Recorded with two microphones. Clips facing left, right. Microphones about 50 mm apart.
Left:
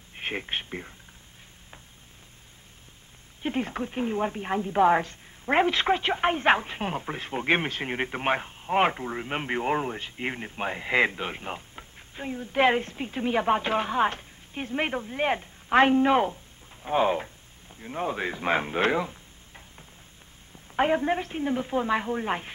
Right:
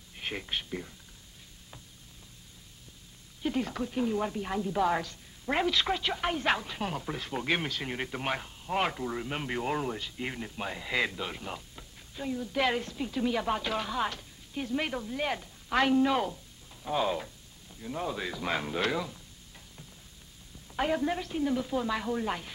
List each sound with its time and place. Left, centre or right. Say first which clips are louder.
0.1 s speech: left 4 dB; left
3.4 s speech: left 2 dB; left
20.7 s speech: left 5 dB; left